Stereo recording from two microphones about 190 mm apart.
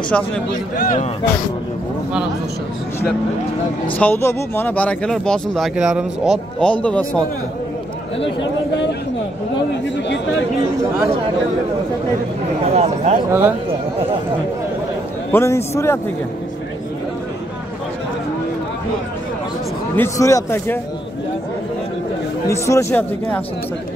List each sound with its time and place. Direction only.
0.1 s speech: 5° left (ahead or behind)
0.7 s speech: 45° left (ahead or behind)
4.0 s speech: 10° left (ahead or behind)
12.7 s speech: 35° right (ahead or behind)
13.3 s a man's voice: 10° right (ahead or behind)
15.3 s a man's voice: 15° left (ahead or behind)
20.0 s a man's voice: 15° left (ahead or behind)
22.5 s a man's voice: 15° left (ahead or behind)